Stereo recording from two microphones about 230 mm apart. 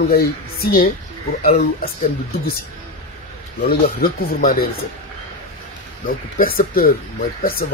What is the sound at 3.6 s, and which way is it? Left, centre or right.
Speech, left.